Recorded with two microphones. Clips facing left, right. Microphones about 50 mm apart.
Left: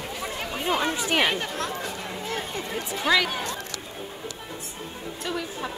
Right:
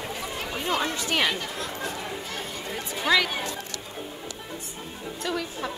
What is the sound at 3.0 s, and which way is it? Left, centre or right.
Speech, centre.